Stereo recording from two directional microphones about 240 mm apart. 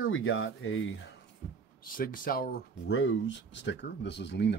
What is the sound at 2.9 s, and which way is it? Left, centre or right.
Speech, left.